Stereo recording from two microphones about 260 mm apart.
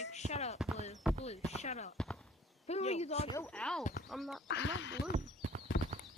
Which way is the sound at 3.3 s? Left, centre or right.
Centre.